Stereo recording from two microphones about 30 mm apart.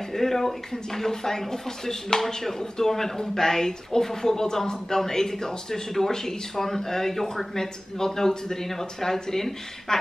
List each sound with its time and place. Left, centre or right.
0.1 s speech: centre